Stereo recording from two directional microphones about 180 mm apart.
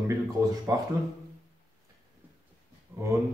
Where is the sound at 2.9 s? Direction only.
10° right (ahead or behind).